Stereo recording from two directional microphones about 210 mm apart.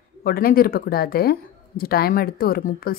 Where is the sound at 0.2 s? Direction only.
45° left (ahead or behind).